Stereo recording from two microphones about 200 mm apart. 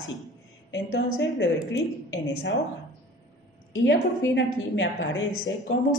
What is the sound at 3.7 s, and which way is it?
A woman's voice, 65° left (ahead or behind).